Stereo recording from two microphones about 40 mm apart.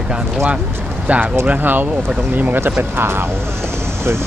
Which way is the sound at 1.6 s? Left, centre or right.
Right.